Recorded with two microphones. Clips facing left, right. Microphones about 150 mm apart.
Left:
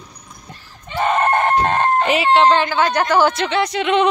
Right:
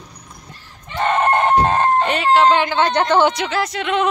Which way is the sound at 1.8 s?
5° left (ahead or behind).